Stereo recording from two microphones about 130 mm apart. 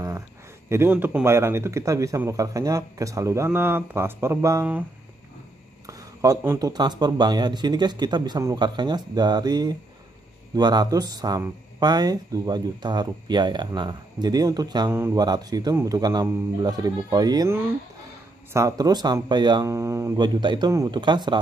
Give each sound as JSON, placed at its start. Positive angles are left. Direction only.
{"t": 0.7, "sound": "speech", "side_deg": -15}
{"t": 5.9, "sound": "a sound", "side_deg": -25}
{"t": 6.7, "sound": "speech", "side_deg": -35}
{"t": 14.9, "sound": "speech", "side_deg": -20}
{"t": 15.1, "sound": "speech", "side_deg": -30}
{"t": 18.5, "sound": "speech", "side_deg": -25}
{"t": 19.6, "sound": "speech", "side_deg": -25}
{"t": 20.2, "sound": "speech", "side_deg": -35}